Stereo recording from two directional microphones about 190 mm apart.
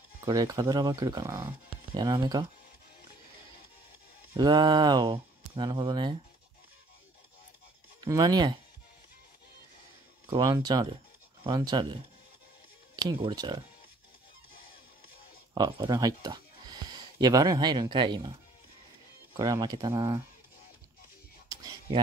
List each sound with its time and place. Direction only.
0.2 s speech: 20° right (ahead or behind)
4.3 s speech: 20° right (ahead or behind)
8.0 s speech: 20° right (ahead or behind)
10.3 s speech: 20° right (ahead or behind)
15.5 s speech: 20° right (ahead or behind)
19.3 s speech: 20° right (ahead or behind)